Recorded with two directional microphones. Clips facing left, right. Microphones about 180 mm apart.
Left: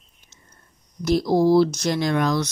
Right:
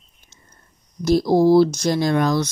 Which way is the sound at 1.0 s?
35° right (ahead or behind).